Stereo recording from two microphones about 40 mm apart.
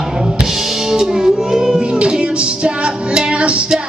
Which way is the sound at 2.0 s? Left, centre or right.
Right.